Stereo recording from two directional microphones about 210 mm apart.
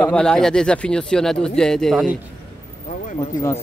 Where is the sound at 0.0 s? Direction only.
5° left (ahead or behind).